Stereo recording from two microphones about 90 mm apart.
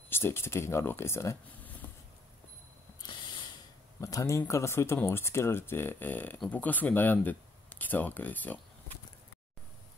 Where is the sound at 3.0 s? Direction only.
60° left (ahead or behind).